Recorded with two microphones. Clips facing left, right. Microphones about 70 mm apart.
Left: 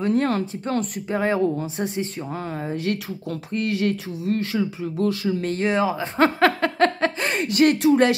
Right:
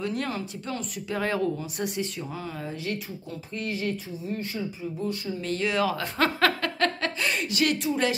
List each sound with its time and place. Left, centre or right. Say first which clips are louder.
0.0 s speech: left 9 dB; left
0.3 s speech: left 8 dB; left
1.1 s speech: left 6 dB; left
2.7 s speech: left 7 dB; left
4.2 s speech: left 8 dB; left
5.4 s speech: left 2 dB; left
5.8 s speech: left 6 dB; left